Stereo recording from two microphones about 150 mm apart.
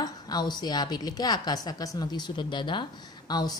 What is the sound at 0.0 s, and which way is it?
A woman's voice, 30° left (ahead or behind).